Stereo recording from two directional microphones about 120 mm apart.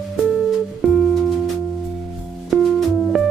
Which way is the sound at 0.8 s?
Centre (ahead or behind).